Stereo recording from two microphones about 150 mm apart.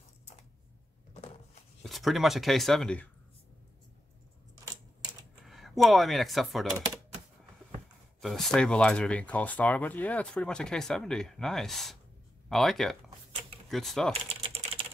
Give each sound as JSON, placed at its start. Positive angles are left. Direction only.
{"t": 1.1, "sound": "a sound", "side_deg": 45}
{"t": 1.8, "sound": "speech", "side_deg": 0}
{"t": 5.4, "sound": "speech", "side_deg": 0}
{"t": 8.2, "sound": "speech", "side_deg": 0}
{"t": 14.3, "sound": "typing", "side_deg": -40}